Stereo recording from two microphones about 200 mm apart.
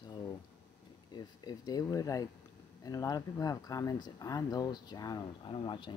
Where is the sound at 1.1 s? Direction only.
20° left (ahead or behind).